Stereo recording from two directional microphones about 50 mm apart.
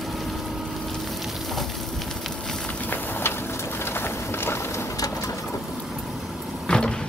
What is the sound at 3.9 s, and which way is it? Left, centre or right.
Vehicle, left.